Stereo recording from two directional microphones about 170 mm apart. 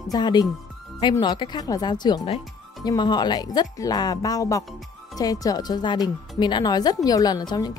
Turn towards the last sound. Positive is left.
turn(degrees=25)  # may be behind; listen again after turning